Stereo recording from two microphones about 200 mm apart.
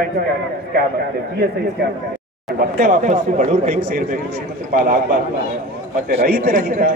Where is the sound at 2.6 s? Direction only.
45° right (ahead or behind).